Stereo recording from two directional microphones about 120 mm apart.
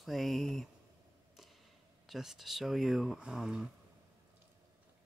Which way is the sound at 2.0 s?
5° right (ahead or behind).